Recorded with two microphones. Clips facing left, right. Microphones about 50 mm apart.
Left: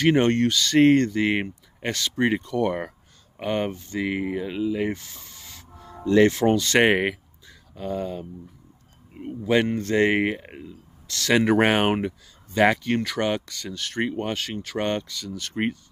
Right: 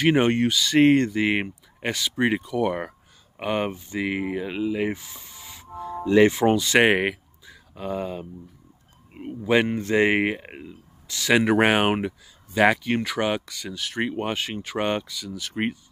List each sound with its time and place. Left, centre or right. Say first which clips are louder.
0.0 s speech: even; centre
10.5 s speech: even; right
11.1 s speech: even; centre